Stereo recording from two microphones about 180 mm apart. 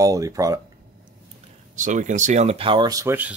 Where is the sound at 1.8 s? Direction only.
45° right (ahead or behind); by 3.4 s 10° right (ahead or behind).